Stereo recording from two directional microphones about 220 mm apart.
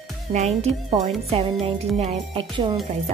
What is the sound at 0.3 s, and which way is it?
Speech, 30° right (ahead or behind).